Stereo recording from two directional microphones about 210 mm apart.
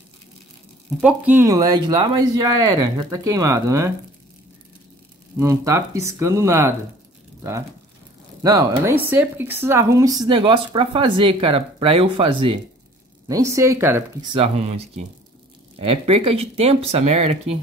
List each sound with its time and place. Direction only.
1.0 s speech: 10° right (ahead or behind)
5.4 s speech: 15° right (ahead or behind)
8.4 s speech: 15° right (ahead or behind)
14.3 s speech: 30° right (ahead or behind)